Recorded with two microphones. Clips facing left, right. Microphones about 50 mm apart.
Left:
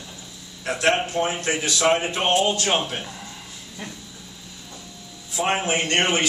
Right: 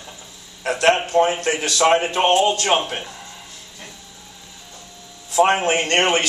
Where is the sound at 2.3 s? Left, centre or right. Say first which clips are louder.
Right 2 dB; centre.